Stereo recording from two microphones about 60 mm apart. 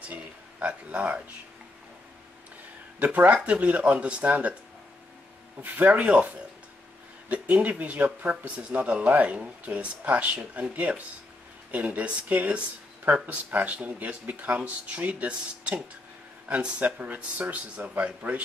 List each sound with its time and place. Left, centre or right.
0.0 s speech: right
3.0 s speech: right
5.6 s speech: right